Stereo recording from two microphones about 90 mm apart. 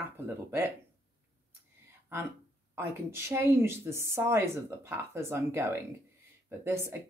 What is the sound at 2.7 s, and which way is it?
Speech, 25° right (ahead or behind).